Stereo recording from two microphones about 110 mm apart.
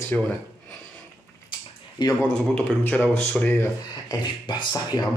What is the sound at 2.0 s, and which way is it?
Speech, 40° left (ahead or behind).